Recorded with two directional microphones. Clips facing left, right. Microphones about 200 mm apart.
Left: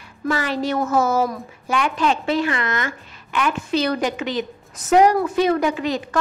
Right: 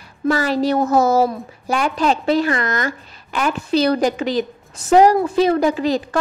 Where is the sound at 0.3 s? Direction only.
40° right (ahead or behind).